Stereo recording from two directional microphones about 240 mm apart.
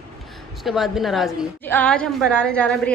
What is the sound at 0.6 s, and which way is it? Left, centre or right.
A child's voice, centre.